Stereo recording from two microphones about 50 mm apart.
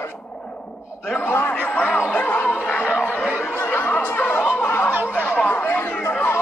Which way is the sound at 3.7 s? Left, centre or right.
Left.